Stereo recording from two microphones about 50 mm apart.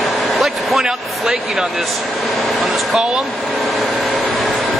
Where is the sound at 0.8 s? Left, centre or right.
Centre.